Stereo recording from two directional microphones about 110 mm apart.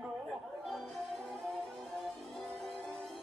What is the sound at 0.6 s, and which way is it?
Music, centre (ahead or behind).